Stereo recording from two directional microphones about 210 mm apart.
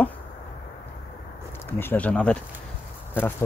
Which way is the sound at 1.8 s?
10° left (ahead or behind).